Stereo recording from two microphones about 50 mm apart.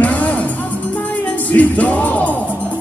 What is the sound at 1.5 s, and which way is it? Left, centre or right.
Music, left.